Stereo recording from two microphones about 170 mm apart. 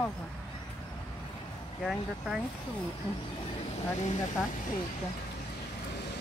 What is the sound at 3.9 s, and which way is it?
Speech, 45° left (ahead or behind).